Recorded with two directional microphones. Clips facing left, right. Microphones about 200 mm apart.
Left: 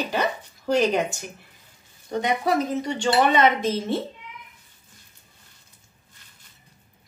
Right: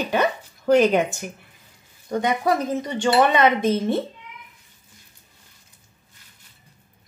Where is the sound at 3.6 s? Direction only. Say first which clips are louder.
Right 4 dB; 55° right (ahead or behind).